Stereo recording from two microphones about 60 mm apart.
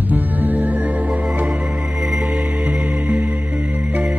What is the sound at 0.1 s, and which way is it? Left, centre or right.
Music, right.